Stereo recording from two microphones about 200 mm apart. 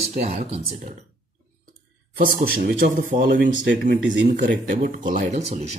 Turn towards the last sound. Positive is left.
turn(degrees=-35)  # may be behind; listen again after turning